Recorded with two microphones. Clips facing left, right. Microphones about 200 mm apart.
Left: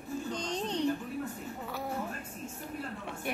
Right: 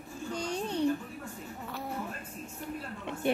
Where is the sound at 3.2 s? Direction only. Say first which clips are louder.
Right 8 dB; 25° right (ahead or behind).